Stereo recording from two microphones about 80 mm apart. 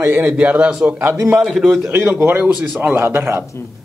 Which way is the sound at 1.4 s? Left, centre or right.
Centre.